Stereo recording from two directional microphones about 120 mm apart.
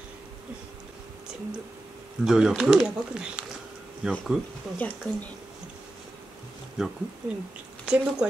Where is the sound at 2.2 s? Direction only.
5° right (ahead or behind).